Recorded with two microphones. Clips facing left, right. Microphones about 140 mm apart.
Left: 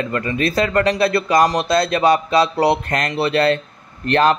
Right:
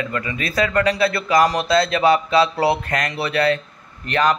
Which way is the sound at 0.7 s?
20° left (ahead or behind).